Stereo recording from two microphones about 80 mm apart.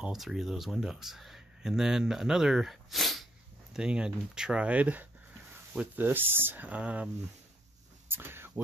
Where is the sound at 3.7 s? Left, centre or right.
Centre.